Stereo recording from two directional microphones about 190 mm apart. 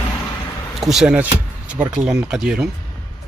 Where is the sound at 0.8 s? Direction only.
Centre (ahead or behind).